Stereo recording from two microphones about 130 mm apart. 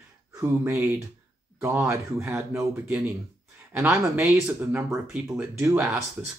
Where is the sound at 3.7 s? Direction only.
20° right (ahead or behind).